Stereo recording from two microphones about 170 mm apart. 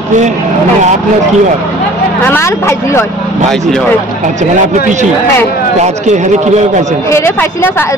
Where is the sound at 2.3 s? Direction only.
15° left (ahead or behind).